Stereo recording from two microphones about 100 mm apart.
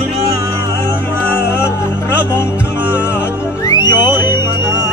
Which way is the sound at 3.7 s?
45° left (ahead or behind).